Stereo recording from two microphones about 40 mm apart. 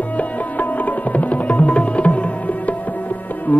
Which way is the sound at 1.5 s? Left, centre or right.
Left.